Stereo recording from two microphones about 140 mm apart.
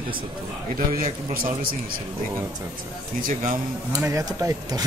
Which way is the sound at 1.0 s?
85° right.